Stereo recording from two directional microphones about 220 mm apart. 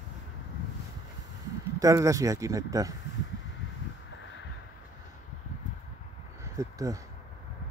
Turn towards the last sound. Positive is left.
turn(degrees=-15)  # may be behind; listen again after turning